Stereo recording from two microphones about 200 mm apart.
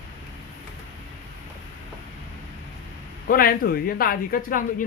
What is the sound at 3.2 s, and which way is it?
Speech, 45° left (ahead or behind).